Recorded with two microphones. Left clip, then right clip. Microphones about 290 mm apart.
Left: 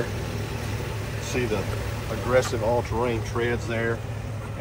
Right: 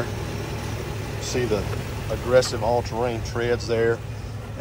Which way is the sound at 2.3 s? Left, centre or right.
Centre.